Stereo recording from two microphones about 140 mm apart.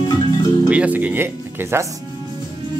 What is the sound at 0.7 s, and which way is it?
Speech, 10° right (ahead or behind).